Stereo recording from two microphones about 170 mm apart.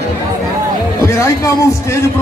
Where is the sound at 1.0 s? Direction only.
15° left (ahead or behind).